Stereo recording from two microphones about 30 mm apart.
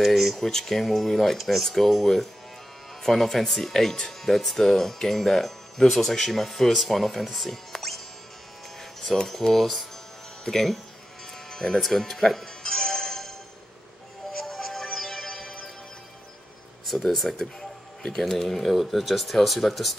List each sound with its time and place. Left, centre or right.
0.0 s speech: centre
0.4 s speech: centre
0.8 s speech: centre
1.4 s speech: centre
4.2 s speech: centre
7.7 s music: centre
9.4 s speech: centre
11.8 s speech: centre
12.6 s music: centre
17.0 s speech: centre
17.4 s music: left
18.1 s speech: centre